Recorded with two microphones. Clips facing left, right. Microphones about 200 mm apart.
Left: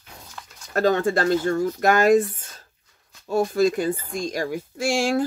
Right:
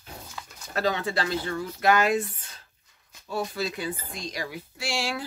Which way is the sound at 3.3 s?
45° left (ahead or behind).